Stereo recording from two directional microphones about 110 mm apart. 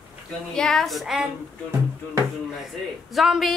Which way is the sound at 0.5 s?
5° left (ahead or behind).